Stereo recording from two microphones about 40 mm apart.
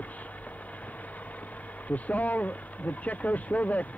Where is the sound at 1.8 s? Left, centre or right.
Left.